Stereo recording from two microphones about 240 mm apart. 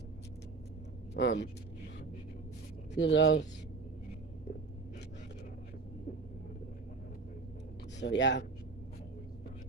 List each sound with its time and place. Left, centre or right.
1.1 s speech: left
2.9 s speech: left
8.0 s speech: left